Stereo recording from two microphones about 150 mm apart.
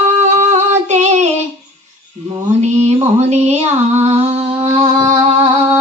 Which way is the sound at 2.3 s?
45° right (ahead or behind).